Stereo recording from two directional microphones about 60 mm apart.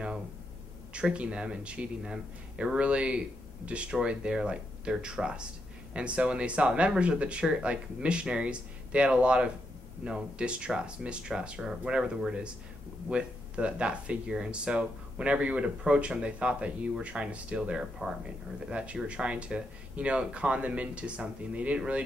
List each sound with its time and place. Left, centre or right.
1.1 s speech: centre